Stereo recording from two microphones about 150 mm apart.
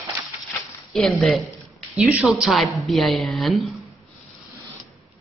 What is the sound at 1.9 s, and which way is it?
Speech, 10° right (ahead or behind).